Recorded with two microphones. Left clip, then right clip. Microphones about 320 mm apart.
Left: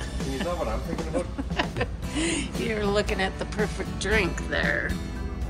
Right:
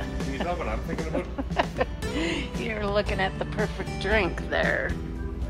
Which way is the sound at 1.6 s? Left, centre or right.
Centre.